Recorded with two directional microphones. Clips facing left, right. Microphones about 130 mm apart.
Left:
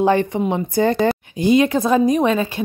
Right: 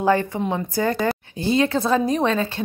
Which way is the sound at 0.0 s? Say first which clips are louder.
Left 3 dB; 20° left (ahead or behind).